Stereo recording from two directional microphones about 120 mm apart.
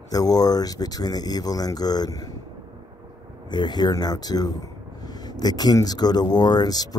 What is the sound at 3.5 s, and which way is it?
Speech, 40° left (ahead or behind).